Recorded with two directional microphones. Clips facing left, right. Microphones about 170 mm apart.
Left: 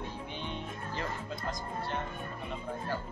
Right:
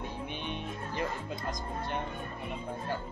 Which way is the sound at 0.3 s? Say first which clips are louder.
Right 2 dB; 15° right (ahead or behind).